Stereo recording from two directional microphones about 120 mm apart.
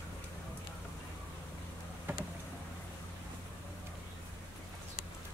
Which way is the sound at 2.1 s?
20° right (ahead or behind).